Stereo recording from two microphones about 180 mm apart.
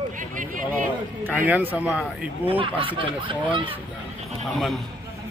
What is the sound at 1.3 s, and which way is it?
Speech, 10° right (ahead or behind).